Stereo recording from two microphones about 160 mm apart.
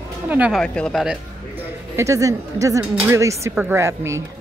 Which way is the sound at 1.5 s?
15° right (ahead or behind).